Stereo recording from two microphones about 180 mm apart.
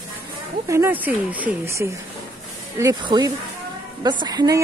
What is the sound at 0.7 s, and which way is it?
A woman's voice, 10° right (ahead or behind).